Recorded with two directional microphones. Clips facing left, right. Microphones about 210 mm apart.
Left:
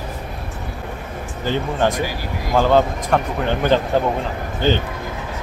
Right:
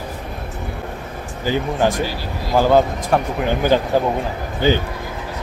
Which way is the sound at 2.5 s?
10° right (ahead or behind).